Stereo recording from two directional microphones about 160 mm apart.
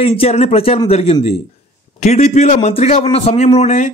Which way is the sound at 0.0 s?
40° left (ahead or behind).